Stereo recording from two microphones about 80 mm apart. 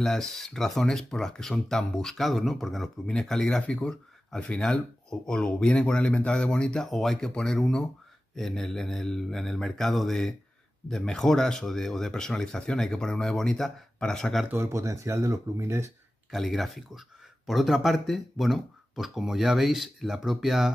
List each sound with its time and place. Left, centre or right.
0.0 s speech: centre
14.5 s speech: right
16.3 s speech: centre